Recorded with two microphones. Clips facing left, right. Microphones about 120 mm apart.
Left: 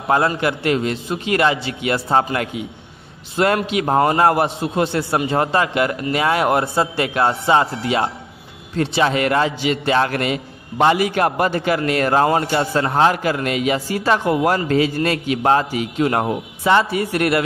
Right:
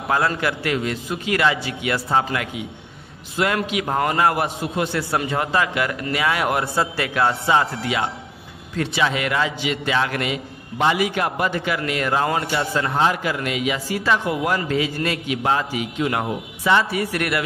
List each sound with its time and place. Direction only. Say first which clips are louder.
0.4 s a man's voice: left 4 dB; 25° left (ahead or behind)
3.5 s a man's voice: left 5 dB; 30° left (ahead or behind)
9.0 s a man's voice: left 4 dB; 45° left (ahead or behind)
16.7 s a man's voice: left 3 dB; 25° left (ahead or behind)